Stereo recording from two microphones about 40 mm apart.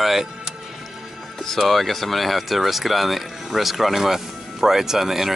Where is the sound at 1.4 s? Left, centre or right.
Centre.